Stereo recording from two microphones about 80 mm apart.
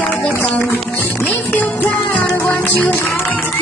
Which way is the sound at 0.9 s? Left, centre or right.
Left.